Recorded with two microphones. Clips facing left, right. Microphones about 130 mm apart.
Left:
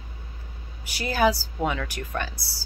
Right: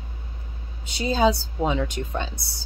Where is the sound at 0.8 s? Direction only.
20° right (ahead or behind).